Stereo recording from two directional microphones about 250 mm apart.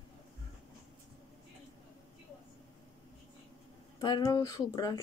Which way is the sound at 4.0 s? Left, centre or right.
Centre.